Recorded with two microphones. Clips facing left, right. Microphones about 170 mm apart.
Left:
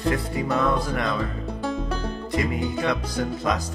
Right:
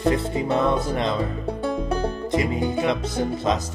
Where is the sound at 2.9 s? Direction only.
25° right (ahead or behind).